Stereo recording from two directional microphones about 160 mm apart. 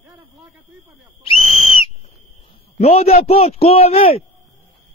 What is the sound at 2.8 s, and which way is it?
A man's voice, 40° left (ahead or behind).